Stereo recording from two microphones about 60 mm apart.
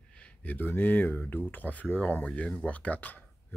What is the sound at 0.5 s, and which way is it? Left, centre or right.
Speech, left.